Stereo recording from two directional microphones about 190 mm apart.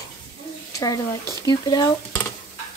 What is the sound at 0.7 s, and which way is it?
Speech, 20° left (ahead or behind).